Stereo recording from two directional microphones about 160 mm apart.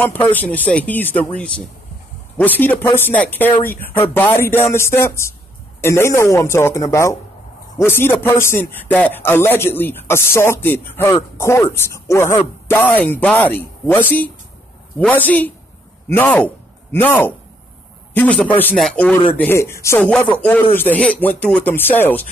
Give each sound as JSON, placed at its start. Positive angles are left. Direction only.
{"t": 0.0, "sound": "a man's voice", "side_deg": 10}